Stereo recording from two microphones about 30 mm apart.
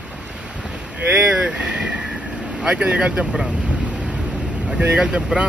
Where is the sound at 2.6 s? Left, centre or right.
Right.